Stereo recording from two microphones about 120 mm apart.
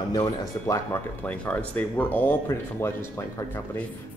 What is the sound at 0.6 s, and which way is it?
Speech, 25° left (ahead or behind).